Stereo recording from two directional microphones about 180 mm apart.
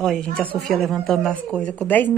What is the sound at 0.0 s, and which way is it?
A woman's voice, 5° left (ahead or behind).